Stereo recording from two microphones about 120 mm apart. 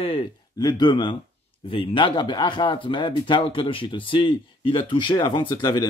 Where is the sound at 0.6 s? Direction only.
35° left (ahead or behind).